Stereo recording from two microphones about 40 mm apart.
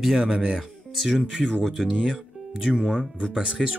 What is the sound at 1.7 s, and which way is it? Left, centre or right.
Speech, centre.